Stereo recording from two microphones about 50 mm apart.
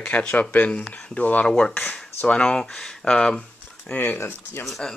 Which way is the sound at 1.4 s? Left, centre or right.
Centre.